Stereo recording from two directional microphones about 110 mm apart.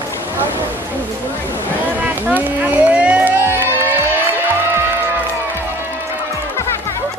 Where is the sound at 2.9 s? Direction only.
10° right (ahead or behind).